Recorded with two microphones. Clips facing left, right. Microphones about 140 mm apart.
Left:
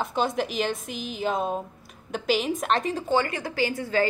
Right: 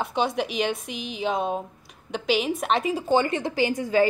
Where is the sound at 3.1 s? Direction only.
20° right (ahead or behind).